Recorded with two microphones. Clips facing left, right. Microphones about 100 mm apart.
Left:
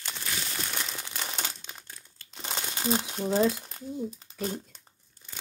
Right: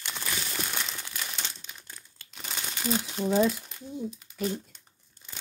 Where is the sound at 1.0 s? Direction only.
30° left (ahead or behind).